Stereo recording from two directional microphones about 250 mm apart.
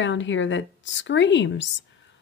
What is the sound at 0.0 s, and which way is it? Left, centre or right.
Speech, left.